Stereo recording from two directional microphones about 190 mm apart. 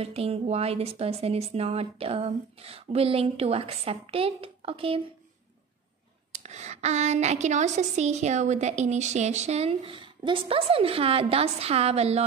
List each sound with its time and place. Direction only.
0.0 s speech: 30° right (ahead or behind)
6.3 s speech: 35° right (ahead or behind)